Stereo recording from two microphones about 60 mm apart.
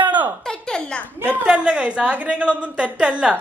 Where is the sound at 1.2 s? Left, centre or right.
Right.